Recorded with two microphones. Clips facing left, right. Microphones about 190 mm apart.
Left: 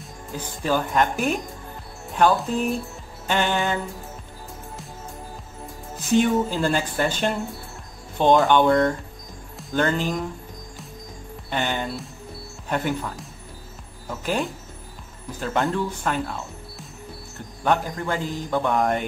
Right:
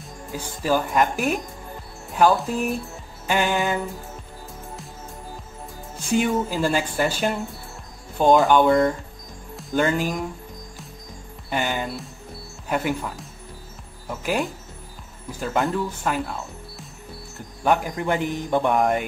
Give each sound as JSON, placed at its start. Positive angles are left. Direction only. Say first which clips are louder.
{"t": 0.3, "sound": "speech", "louder": "right 1 dB", "side_deg": -5}
{"t": 6.1, "sound": "speech", "louder": "left 2 dB", "side_deg": -5}
{"t": 11.5, "sound": "speech", "louder": "right 1 dB", "side_deg": -5}
{"t": 17.6, "sound": "a man's voice", "louder": "right 2 dB", "side_deg": -20}
{"t": 18.8, "sound": "speech", "louder": "right 1 dB", "side_deg": 0}